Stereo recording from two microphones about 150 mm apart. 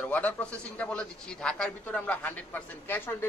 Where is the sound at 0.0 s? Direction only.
10° left (ahead or behind).